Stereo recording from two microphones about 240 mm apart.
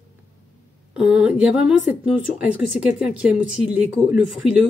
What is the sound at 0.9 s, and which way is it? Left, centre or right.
A woman's voice, centre.